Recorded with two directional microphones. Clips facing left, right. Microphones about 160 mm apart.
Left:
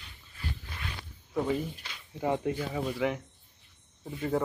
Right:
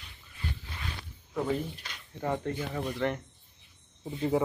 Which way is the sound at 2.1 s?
15° left (ahead or behind).